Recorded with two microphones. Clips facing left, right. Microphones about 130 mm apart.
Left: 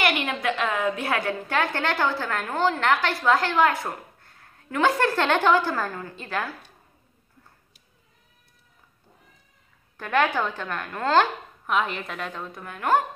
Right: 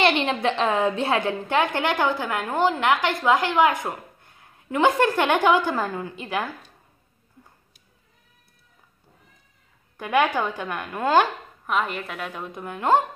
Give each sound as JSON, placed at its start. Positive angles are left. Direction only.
{"t": 0.0, "sound": "a woman's voice", "side_deg": -25}
{"t": 9.9, "sound": "a woman's voice", "side_deg": -15}
{"t": 11.7, "sound": "a woman's voice", "side_deg": 0}